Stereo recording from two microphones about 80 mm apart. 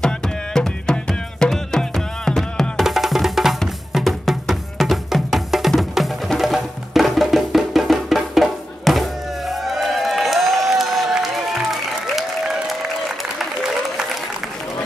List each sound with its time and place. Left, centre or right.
0.0 s music: centre